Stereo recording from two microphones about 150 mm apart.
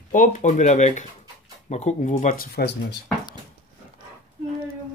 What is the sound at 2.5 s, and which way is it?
Speech, 90° left.